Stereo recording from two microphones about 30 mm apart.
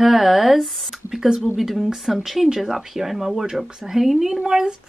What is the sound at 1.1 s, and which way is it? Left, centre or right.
Speech, right.